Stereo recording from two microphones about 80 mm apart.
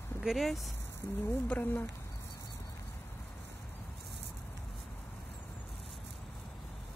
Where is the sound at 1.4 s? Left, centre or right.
Left.